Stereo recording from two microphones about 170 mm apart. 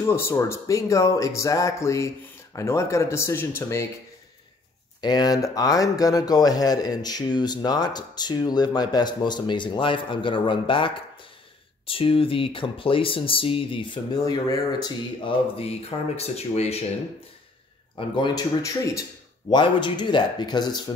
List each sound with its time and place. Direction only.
0.0 s speech: 15° left (ahead or behind)
5.0 s speech: 25° left (ahead or behind)
16.2 s speech: 40° left (ahead or behind)
17.9 s speech: 25° left (ahead or behind)